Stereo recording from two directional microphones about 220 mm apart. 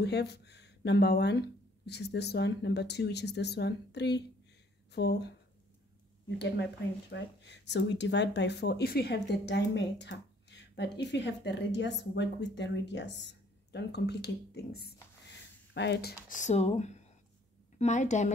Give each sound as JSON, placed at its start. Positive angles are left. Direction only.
{"t": 0.0, "sound": "speech", "side_deg": 50}
{"t": 6.3, "sound": "speech", "side_deg": 50}